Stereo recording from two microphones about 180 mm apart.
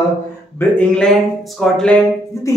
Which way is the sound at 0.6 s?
5° left (ahead or behind).